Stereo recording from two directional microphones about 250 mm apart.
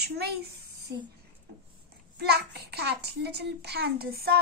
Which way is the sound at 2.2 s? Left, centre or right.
Right.